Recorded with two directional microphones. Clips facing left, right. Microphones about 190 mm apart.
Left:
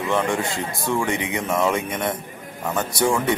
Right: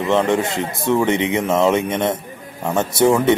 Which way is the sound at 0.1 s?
20° right (ahead or behind).